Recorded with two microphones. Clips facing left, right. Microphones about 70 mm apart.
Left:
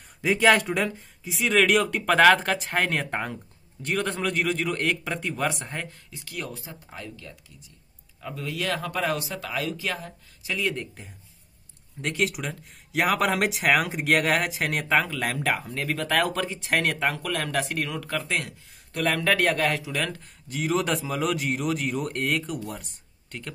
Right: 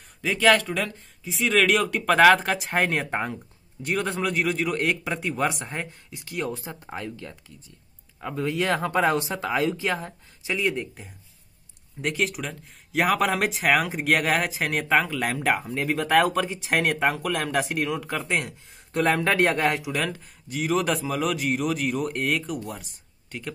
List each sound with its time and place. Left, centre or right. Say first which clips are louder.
0.2 s speech: even; centre
1.2 s a man's voice: even; centre
6.1 s speech: right 6 dB; right
11.0 s a man's voice: right 1 dB; centre
15.5 s speech: right 3 dB; centre
16.3 s speech: right 2 dB; centre; by 19.9 s right
19.9 s a man's voice: right 2 dB; centre